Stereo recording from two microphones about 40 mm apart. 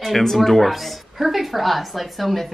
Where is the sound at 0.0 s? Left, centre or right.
Centre.